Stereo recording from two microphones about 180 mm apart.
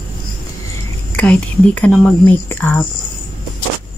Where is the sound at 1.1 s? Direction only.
10° left (ahead or behind).